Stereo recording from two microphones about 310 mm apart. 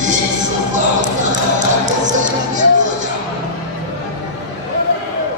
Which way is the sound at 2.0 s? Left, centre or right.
Right.